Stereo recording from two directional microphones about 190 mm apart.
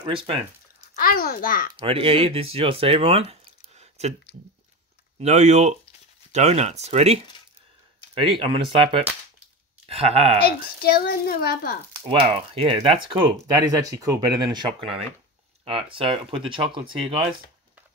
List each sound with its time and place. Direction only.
0.0 s speech: 30° right (ahead or behind)
0.9 s a woman's voice: 50° left (ahead or behind)
1.7 s speech: 25° right (ahead or behind)
5.2 s speech: 35° right (ahead or behind)
10.4 s a woman's voice: 55° left (ahead or behind)
11.9 s speech: 30° right (ahead or behind)